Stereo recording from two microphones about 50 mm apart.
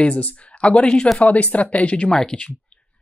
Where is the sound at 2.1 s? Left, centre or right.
Centre.